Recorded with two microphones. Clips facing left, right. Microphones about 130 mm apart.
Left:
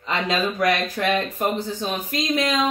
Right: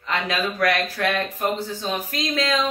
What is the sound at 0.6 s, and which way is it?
Speech, 20° left (ahead or behind).